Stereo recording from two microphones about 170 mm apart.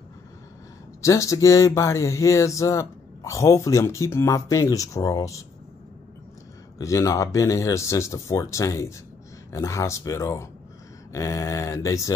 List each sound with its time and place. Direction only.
1.0 s speech: 20° left (ahead or behind)
6.8 s speech: 20° left (ahead or behind)